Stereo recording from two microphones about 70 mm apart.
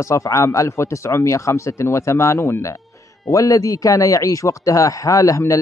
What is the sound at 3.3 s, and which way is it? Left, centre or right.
Speech, left.